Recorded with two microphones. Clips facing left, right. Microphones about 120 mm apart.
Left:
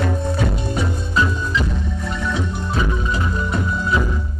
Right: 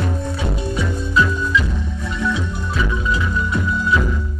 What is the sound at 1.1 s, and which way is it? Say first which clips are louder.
Music: right 3 dB; 35° left (ahead or behind).